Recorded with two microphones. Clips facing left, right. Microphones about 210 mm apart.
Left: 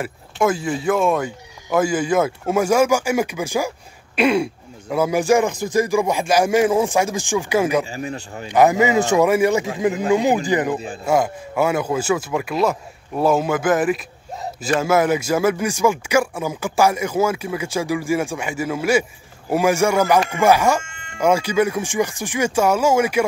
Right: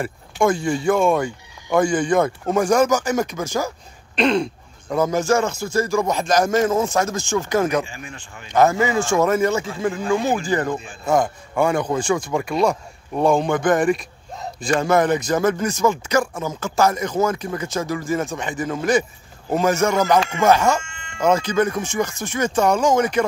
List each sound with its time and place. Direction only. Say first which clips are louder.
0.0 s speech: even; 5° left (ahead or behind)
7.8 s speech: left 8 dB; 35° left (ahead or behind)
8.5 s speech: left 2 dB; 15° left (ahead or behind)
20.8 s music: even; 55° left (ahead or behind)
21.2 s speech: left 1 dB; 10° left (ahead or behind)